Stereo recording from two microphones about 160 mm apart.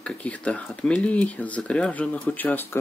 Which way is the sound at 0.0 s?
10° left (ahead or behind).